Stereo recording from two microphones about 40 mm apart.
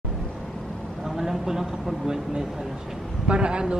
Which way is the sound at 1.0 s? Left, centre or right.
Centre.